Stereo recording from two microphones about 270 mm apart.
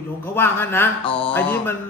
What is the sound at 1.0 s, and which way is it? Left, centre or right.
Speech, centre.